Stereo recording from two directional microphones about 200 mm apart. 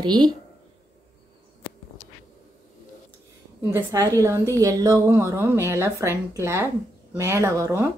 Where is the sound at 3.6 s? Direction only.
15° right (ahead or behind).